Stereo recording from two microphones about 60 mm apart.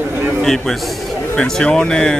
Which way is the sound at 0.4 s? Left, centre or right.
Centre.